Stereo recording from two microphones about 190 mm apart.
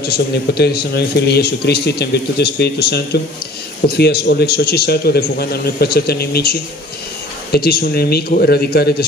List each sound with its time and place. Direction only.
0.1 s speech: 55° left (ahead or behind)
7.5 s speech: 55° left (ahead or behind)